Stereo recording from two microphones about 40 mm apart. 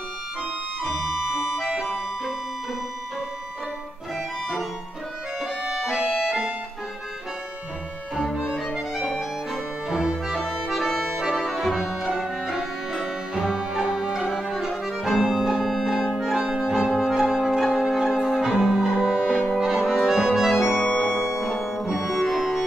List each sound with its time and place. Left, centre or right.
1.6 s music: centre
5.9 s music: centre
9.0 s music: centre
17.0 s brass instrument: centre
17.5 s music: centre
19.6 s accordion: centre
20.8 s music: left
21.1 s music: centre
21.5 s music: centre